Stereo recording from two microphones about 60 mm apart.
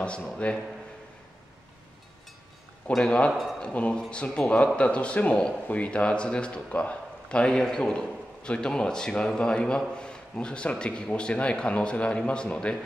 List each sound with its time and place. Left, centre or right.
0.0 s a man's voice: centre
3.0 s speech: centre
3.3 s speech: centre
3.6 s a man's voice: centre